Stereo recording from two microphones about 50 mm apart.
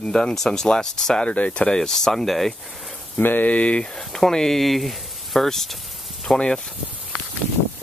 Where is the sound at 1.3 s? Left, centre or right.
Left; by 2.6 s centre.